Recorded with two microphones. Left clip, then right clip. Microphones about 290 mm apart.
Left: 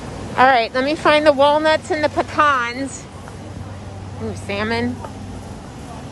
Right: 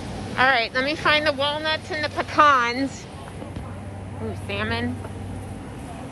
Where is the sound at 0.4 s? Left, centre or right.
Centre.